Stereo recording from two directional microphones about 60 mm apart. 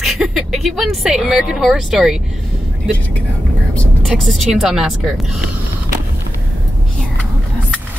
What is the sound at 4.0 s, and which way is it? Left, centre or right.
A woman's voice, centre.